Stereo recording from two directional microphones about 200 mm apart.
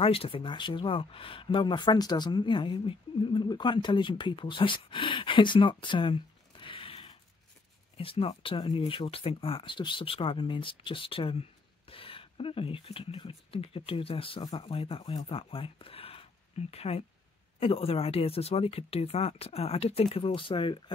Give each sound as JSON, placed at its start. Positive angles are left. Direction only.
{"t": 0.0, "sound": "speech", "side_deg": 25}